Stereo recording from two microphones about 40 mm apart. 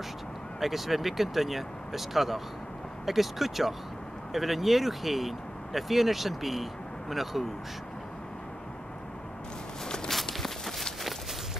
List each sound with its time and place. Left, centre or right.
0.6 s speech: centre
9.8 s walk: centre
10.3 s a sound: centre